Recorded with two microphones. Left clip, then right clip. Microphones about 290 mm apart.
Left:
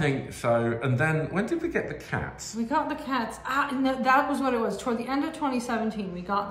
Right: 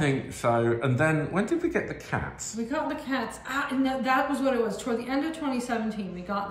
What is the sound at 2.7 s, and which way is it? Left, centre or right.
A woman's voice, centre.